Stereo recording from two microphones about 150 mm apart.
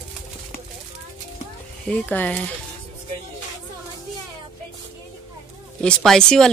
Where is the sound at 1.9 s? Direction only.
10° left (ahead or behind).